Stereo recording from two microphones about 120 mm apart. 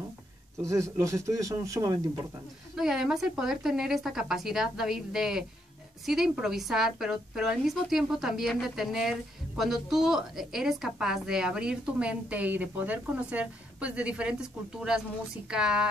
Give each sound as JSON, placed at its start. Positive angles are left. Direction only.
{"t": 0.7, "sound": "speech", "side_deg": -25}
{"t": 2.8, "sound": "a woman's voice", "side_deg": -5}